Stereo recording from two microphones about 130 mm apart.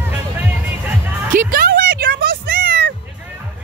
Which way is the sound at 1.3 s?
90° right.